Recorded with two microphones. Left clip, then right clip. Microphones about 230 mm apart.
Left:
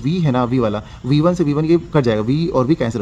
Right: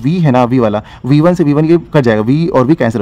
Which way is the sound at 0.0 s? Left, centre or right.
Right.